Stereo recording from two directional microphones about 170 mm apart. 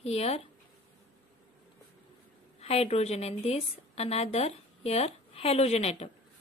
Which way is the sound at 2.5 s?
35° left (ahead or behind).